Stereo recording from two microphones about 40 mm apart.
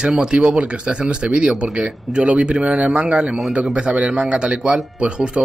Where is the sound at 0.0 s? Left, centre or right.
Right.